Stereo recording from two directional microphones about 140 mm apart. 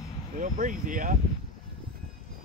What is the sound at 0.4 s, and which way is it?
Speech, 65° right (ahead or behind).